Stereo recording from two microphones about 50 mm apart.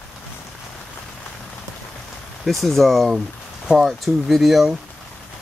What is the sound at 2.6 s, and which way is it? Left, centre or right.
Speech, centre.